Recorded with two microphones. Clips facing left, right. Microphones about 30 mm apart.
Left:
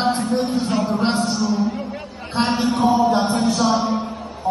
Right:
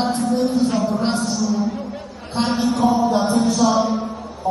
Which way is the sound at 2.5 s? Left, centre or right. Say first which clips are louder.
Even; left.